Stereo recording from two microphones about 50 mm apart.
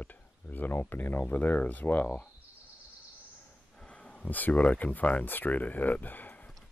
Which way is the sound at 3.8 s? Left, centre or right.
Left.